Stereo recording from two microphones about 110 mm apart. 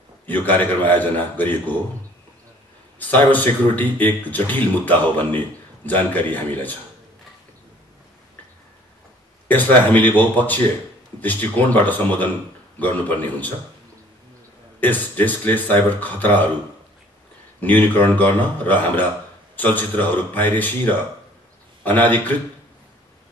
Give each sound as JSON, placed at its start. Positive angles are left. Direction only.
{"t": 0.3, "sound": "a man's voice", "side_deg": 15}
{"t": 3.0, "sound": "a man's voice", "side_deg": 15}
{"t": 9.5, "sound": "a man's voice", "side_deg": 15}
{"t": 14.8, "sound": "a man's voice", "side_deg": 15}
{"t": 17.6, "sound": "a man's voice", "side_deg": 15}
{"t": 21.8, "sound": "a man's voice", "side_deg": 15}